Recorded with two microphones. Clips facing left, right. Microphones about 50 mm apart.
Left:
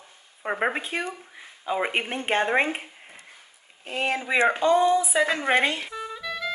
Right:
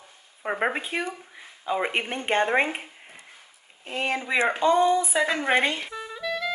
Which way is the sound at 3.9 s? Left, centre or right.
Centre.